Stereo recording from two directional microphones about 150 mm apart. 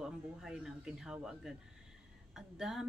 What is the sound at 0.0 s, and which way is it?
Speech, 5° right (ahead or behind).